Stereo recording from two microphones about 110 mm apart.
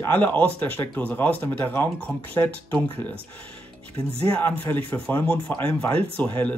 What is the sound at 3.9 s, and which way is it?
Speech, 70° right (ahead or behind).